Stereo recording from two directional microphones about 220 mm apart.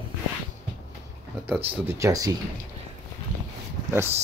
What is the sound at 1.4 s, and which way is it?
Speech, 10° right (ahead or behind).